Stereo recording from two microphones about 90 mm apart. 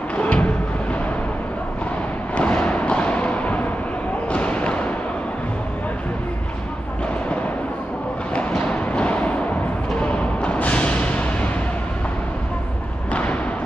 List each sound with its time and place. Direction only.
0.1 s music: 15° left (ahead or behind)
2.3 s a sound: 15° left (ahead or behind)
4.3 s basketball bounce: 15° left (ahead or behind)
8.4 s a sound: 15° left (ahead or behind)
9.9 s music: 15° left (ahead or behind)
13.1 s thump: 15° left (ahead or behind)